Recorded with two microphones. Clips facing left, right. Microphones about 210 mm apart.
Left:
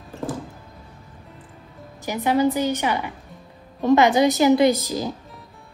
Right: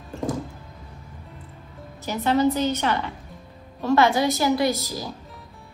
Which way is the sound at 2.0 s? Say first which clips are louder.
Left 1 dB; 15° left (ahead or behind).